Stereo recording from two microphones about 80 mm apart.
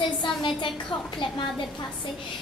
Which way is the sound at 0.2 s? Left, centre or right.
Left.